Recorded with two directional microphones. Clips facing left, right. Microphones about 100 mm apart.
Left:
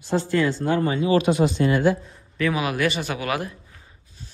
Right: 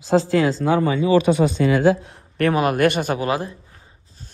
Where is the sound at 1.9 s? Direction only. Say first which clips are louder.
Right 5 dB; 75° right (ahead or behind).